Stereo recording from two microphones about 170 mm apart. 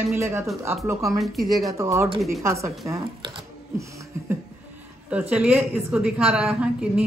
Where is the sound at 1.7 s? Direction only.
15° right (ahead or behind).